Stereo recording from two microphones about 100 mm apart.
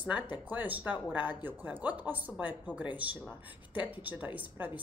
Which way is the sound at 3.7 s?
15° right (ahead or behind).